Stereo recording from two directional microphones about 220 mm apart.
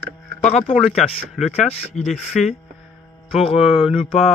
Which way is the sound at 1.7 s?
30° left (ahead or behind).